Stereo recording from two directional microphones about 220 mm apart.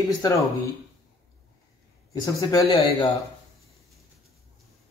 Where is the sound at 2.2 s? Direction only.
15° left (ahead or behind).